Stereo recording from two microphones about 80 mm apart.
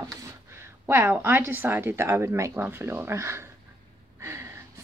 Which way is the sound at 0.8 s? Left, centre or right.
Right.